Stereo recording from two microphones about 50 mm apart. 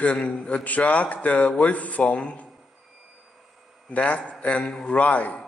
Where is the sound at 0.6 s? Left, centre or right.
Left.